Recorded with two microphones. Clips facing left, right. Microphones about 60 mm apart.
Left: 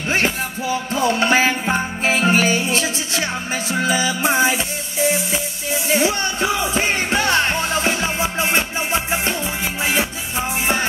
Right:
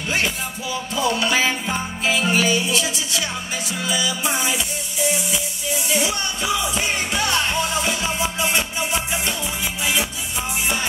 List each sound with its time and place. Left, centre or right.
0.1 s music: left